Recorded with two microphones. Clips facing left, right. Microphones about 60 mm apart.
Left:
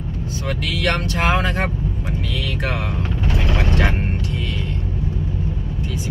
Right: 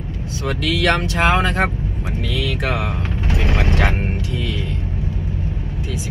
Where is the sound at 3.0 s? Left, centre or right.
Right.